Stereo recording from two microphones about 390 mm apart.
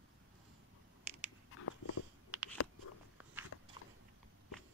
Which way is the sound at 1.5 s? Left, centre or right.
Left.